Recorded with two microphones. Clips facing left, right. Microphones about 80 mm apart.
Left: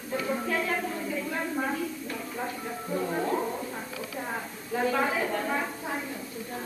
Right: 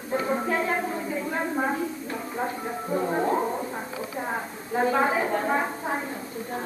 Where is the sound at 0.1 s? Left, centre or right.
Right.